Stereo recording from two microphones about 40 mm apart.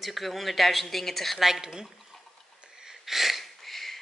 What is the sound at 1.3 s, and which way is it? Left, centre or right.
Speech, centre.